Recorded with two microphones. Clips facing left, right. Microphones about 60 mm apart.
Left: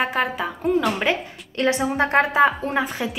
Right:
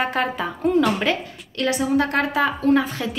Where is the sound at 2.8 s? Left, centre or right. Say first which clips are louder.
Even; centre.